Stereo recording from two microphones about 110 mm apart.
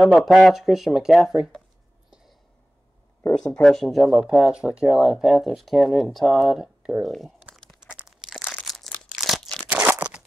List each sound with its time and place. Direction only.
0.0 s speech: centre (ahead or behind)
3.5 s speech: 5° left (ahead or behind)
8.0 s a sound: 5° right (ahead or behind)
8.6 s crumpling: centre (ahead or behind)
9.1 s a sound: centre (ahead or behind)
9.7 s crunch: 15° right (ahead or behind)